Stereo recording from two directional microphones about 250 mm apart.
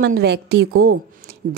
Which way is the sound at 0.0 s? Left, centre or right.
Right.